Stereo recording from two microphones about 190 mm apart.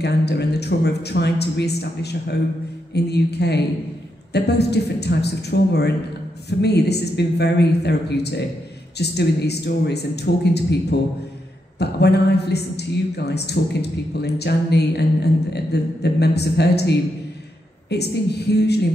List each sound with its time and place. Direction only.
0.0 s a woman's voice: 60° left (ahead or behind)